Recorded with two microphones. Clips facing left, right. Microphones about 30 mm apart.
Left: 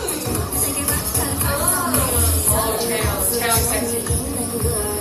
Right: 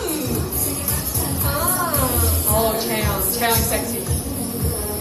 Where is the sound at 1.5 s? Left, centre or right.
Left.